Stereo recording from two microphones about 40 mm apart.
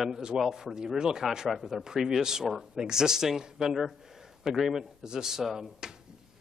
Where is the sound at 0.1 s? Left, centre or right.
Centre.